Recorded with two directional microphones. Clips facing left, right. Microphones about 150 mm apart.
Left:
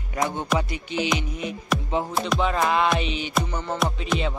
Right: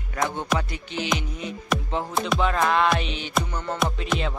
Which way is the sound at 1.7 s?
Centre (ahead or behind).